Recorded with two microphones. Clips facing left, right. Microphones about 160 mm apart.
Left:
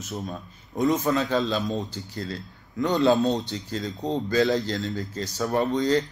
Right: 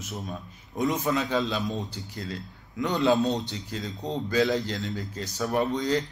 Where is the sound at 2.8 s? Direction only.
35° left (ahead or behind).